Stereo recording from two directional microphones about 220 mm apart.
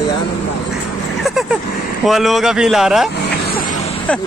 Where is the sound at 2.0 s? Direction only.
Centre (ahead or behind).